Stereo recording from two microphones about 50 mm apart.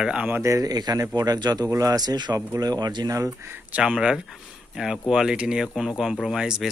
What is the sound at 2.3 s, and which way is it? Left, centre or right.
Speech, right.